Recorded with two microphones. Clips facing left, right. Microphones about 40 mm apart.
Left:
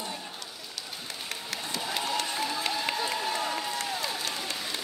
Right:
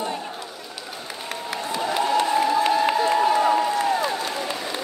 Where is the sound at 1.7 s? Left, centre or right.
Centre.